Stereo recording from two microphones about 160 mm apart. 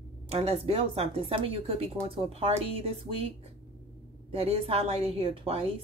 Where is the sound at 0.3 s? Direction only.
40° right (ahead or behind).